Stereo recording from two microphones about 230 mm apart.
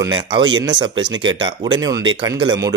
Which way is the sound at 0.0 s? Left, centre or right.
Centre.